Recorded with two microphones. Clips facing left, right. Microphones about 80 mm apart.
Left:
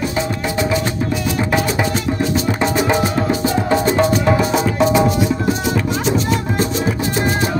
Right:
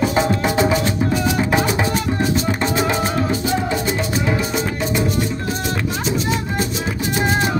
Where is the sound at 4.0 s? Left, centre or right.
Left.